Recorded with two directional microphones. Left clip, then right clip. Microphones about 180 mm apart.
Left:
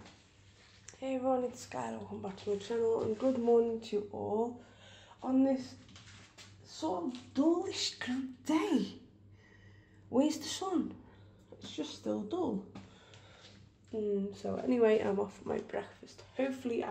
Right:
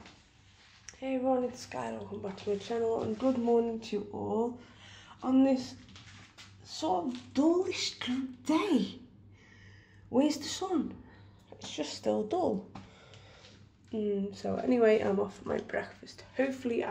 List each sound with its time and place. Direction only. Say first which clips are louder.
0.8 s speech: right 2 dB; 5° left (ahead or behind)
6.7 s speech: right 5 dB; 10° right (ahead or behind)
7.6 s a woman's voice: right 3 dB; 10° left (ahead or behind)
10.1 s speech: right 2 dB; centre (ahead or behind)
11.6 s speech: right 6 dB; 15° right (ahead or behind)
13.9 s speech: right 2 dB; 5° right (ahead or behind)